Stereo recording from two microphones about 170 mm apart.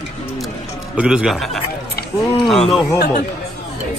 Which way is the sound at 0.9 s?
5° right (ahead or behind).